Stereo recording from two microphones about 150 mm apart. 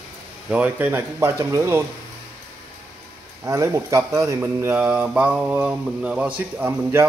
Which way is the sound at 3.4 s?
20° right (ahead or behind).